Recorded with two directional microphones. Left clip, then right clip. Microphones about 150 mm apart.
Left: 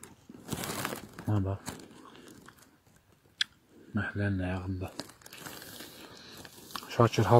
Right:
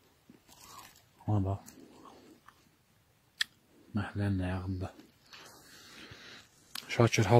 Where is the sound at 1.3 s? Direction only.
15° right (ahead or behind).